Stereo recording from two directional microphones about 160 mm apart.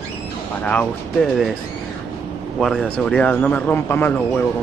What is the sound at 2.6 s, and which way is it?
A man's voice, centre (ahead or behind).